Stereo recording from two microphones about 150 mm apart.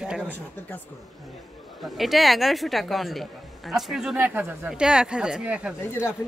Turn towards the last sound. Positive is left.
turn(degrees=15)  # may be behind; listen again after turning